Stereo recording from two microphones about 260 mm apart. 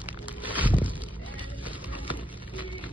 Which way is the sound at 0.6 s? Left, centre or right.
Centre.